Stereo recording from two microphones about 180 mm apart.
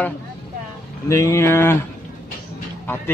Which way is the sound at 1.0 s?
15° left (ahead or behind).